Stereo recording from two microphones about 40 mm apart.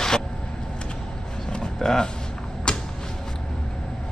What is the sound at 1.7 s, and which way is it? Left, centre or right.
Speech, centre.